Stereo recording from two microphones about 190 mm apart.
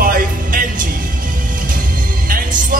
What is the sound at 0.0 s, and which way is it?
Music, 50° right (ahead or behind).